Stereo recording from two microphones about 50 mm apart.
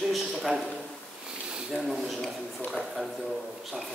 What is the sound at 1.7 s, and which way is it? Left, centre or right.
Speech, centre.